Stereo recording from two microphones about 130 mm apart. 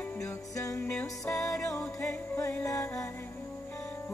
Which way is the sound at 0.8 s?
5° left (ahead or behind).